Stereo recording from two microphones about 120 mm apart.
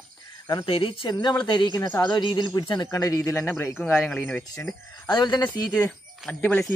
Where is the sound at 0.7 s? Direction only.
50° left (ahead or behind); by 3.7 s 20° left (ahead or behind).